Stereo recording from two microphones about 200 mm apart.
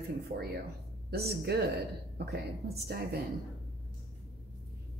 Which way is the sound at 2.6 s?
55° right (ahead or behind).